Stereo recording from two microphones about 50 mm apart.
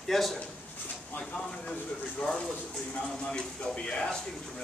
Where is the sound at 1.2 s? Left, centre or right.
Centre.